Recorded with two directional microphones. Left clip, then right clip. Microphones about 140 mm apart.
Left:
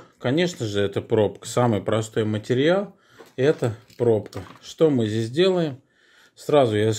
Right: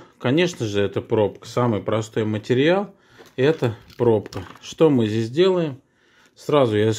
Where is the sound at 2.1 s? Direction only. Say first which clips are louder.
Right 2 dB; 15° right (ahead or behind).